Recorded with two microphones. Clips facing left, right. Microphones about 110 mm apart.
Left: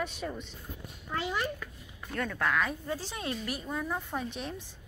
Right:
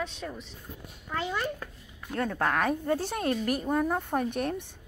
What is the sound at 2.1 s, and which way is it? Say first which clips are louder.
A woman's voice: right 3 dB; 35° right (ahead or behind).